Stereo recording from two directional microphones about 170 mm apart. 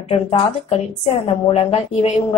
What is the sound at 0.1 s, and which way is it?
A woman's voice, 35° left (ahead or behind).